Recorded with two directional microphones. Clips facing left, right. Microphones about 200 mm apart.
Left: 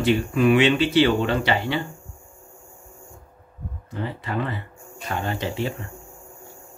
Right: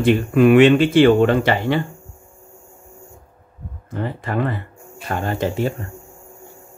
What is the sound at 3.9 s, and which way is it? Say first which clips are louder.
Speech: right 4 dB; 50° right (ahead or behind).